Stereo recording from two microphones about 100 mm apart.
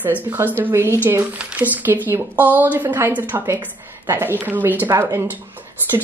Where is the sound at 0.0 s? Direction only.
20° right (ahead or behind).